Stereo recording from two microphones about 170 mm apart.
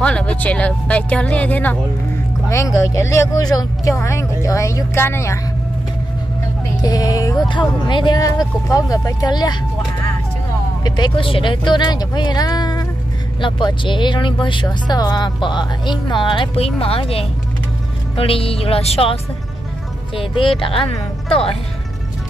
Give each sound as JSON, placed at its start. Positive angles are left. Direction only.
{"t": 0.0, "sound": "speech", "side_deg": 5}
{"t": 6.8, "sound": "speech", "side_deg": 25}
{"t": 10.8, "sound": "speech", "side_deg": 25}
{"t": 20.2, "sound": "speech", "side_deg": 30}